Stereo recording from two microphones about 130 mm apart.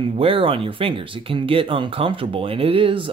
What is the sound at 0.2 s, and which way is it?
Speech, 45° right (ahead or behind).